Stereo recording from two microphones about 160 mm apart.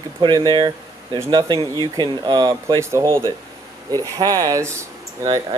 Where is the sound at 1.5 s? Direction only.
20° left (ahead or behind).